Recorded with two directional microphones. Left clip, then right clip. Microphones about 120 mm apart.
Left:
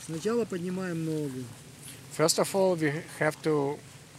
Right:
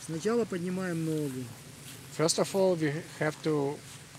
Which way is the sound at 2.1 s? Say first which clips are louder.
Left 2 dB; 30° left (ahead or behind).